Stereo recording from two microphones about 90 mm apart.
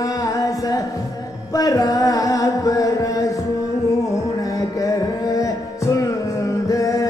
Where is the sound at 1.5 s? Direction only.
40° left (ahead or behind).